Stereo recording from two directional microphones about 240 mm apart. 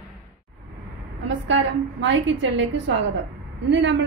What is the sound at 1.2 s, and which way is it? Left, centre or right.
A woman's voice, right.